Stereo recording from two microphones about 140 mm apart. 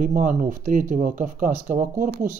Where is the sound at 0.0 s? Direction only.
70° right (ahead or behind).